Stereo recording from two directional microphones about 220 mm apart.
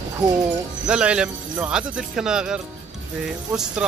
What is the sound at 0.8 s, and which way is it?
Speech, 5° right (ahead or behind).